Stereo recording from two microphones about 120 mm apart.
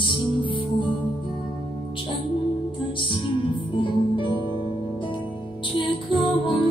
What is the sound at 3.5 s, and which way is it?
Music, 45° left (ahead or behind).